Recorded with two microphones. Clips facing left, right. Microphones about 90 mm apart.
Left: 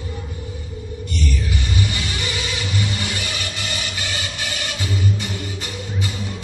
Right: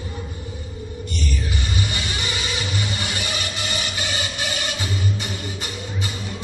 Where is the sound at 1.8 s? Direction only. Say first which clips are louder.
Left 2 dB; 25° right (ahead or behind).